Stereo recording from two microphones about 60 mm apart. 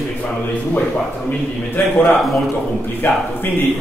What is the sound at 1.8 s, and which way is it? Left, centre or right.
Speech, left.